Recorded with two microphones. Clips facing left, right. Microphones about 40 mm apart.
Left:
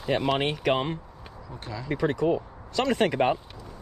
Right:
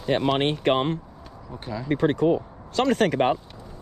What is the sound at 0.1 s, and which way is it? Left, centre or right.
Speech, right.